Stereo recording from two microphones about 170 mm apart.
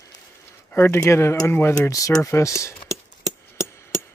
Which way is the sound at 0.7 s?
15° left (ahead or behind).